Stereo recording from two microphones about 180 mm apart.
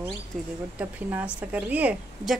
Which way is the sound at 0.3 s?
Centre (ahead or behind).